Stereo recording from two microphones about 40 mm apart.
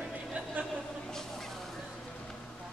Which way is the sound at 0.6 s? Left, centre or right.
Right.